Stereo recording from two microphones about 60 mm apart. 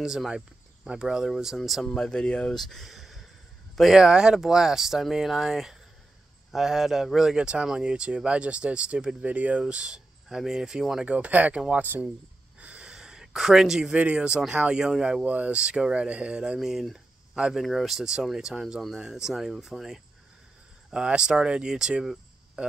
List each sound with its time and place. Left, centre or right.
0.0 s speech: centre
1.9 s speech: centre
2.5 s speech: centre
4.0 s speech: centre
11.1 s speech: right
12.5 s gasp: right
13.9 s speech: centre
15.2 s speech: right
16.5 s speech: centre